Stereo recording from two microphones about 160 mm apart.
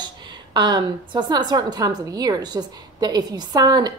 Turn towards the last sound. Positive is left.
turn(degrees=-25)  # may be behind; listen again after turning